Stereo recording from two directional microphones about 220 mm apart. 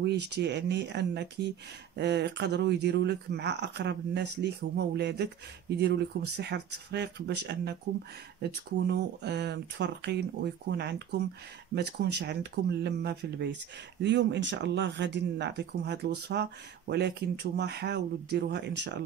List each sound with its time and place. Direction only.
0.0 s speech: 50° right (ahead or behind)